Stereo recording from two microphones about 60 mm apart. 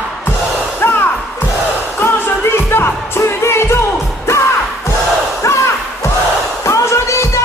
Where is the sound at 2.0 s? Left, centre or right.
Left.